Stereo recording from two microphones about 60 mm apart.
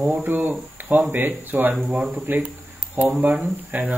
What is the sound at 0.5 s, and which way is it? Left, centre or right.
Speech, right.